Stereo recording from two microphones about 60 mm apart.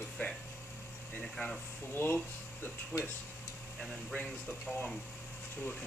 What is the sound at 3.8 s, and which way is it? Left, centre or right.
Speech, left.